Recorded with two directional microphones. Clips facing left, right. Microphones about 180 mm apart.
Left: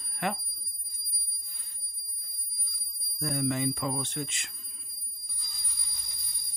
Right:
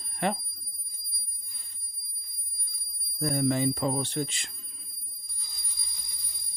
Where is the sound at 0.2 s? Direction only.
30° right (ahead or behind).